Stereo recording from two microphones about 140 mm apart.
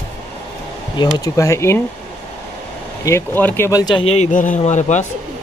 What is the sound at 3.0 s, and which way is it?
Speech, 15° left (ahead or behind).